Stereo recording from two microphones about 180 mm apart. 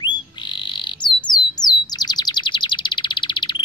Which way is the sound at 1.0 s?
25° left (ahead or behind).